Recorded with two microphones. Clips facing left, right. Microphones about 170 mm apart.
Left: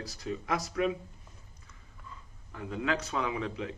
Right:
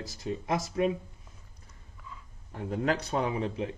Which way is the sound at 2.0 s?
Centre (ahead or behind).